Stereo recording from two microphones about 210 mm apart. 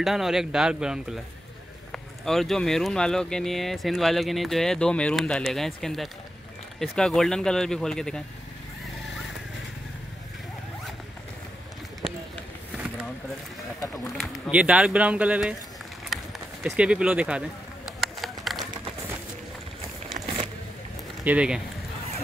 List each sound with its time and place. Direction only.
0.0 s speech: centre (ahead or behind)
13.9 s speech: centre (ahead or behind)
16.1 s run: centre (ahead or behind)
16.6 s a sound: 5° right (ahead or behind)
20.2 s a sound: 40° right (ahead or behind)
21.2 s speech: 5° right (ahead or behind)